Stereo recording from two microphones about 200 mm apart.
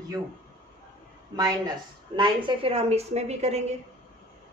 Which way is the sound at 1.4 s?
20° right (ahead or behind).